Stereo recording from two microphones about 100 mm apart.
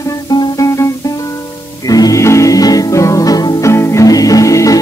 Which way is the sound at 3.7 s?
30° left (ahead or behind).